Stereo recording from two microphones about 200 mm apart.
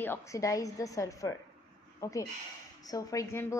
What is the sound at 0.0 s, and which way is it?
A woman's voice, 10° left (ahead or behind).